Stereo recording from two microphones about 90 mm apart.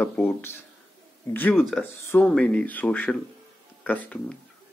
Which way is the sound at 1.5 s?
Centre (ahead or behind).